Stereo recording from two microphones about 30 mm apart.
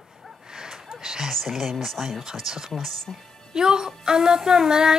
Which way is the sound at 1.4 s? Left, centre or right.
Centre.